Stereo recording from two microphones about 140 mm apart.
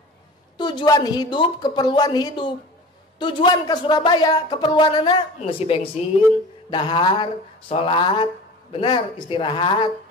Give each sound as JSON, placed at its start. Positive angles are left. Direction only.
{"t": 0.6, "sound": "speech", "side_deg": 30}